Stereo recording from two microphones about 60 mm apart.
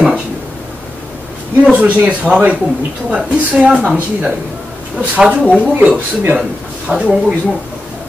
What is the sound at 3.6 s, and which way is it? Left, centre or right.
Speech, centre.